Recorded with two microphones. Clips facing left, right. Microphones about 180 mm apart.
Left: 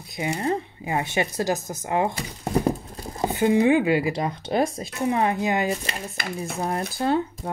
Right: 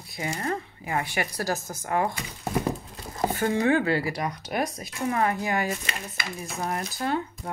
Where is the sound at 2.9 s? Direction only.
35° left (ahead or behind).